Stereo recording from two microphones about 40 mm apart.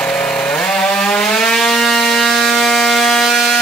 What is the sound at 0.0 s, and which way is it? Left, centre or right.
Chainsaw, left.